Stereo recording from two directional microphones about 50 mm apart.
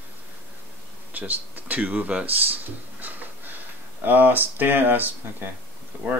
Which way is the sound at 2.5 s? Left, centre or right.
Right.